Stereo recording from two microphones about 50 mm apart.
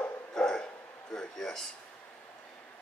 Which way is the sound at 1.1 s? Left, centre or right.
Centre.